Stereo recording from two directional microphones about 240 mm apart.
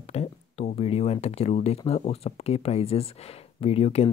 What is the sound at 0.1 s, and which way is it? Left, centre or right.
Speech, left.